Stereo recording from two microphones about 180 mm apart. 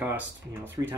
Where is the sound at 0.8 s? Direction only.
20° right (ahead or behind).